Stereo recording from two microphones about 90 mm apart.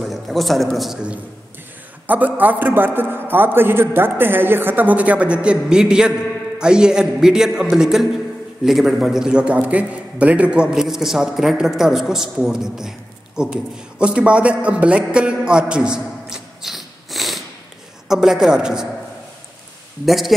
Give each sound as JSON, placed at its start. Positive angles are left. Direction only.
{"t": 0.0, "sound": "a man's voice", "side_deg": 0}
{"t": 2.0, "sound": "a man's voice", "side_deg": -20}
{"t": 20.1, "sound": "a man's voice", "side_deg": 0}